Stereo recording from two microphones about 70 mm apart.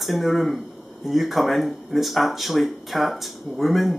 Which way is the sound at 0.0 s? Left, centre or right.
Centre.